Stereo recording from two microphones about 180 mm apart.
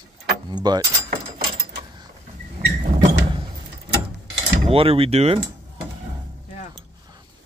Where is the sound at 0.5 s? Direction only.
25° right (ahead or behind).